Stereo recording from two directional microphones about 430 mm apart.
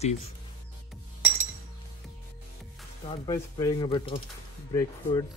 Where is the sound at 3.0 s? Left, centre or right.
Centre.